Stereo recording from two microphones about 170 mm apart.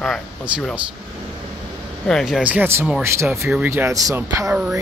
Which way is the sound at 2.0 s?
Centre (ahead or behind).